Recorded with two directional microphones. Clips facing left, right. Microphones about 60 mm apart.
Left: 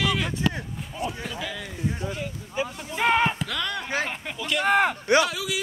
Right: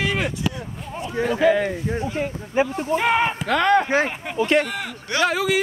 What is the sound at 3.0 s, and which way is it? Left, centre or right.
Speech, centre.